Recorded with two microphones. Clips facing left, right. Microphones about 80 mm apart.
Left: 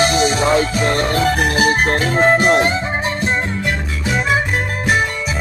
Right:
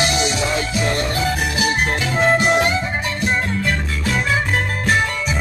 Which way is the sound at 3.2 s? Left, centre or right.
Centre.